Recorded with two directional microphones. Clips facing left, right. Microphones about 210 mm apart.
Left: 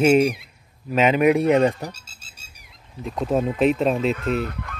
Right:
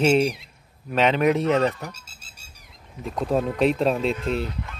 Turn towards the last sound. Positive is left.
turn(degrees=55)  # may be behind; listen again after turning